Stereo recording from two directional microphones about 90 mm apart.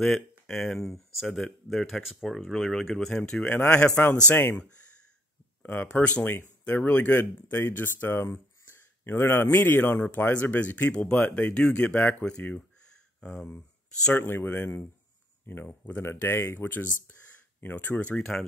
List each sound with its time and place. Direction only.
0.0 s speech: 5° left (ahead or behind); by 4.6 s 25° left (ahead or behind)
5.6 s speech: 20° left (ahead or behind)
14.2 s speech: 25° left (ahead or behind)